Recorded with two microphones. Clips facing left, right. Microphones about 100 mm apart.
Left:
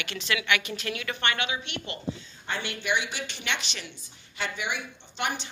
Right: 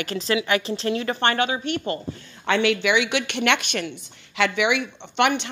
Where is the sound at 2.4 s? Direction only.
90° right; by 3.9 s 55° right (ahead or behind).